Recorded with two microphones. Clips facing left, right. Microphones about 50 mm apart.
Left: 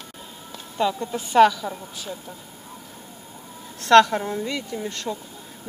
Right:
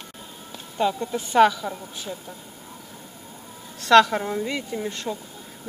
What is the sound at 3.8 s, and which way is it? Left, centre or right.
A woman's voice, centre.